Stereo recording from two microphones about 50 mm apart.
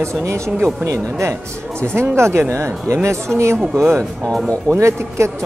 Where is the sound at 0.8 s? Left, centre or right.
Right.